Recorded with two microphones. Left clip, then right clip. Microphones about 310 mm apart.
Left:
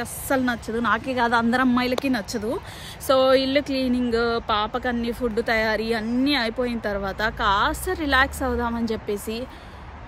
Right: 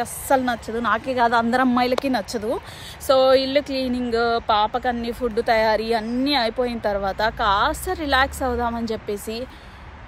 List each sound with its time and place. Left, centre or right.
0.0 s speech: centre